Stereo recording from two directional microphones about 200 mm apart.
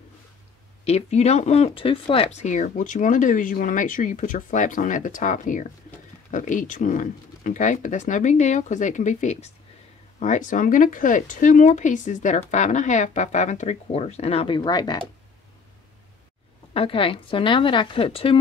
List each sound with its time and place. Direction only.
0.8 s speech: 30° left (ahead or behind)
16.7 s speech: 25° left (ahead or behind)